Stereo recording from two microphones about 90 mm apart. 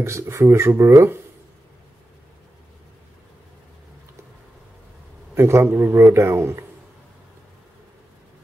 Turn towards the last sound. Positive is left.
turn(degrees=-25)  # may be behind; listen again after turning